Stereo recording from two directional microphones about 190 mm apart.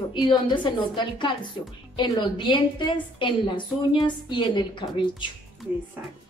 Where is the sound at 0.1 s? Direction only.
25° left (ahead or behind).